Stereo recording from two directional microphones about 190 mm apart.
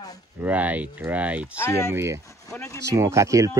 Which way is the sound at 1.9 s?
15° right (ahead or behind).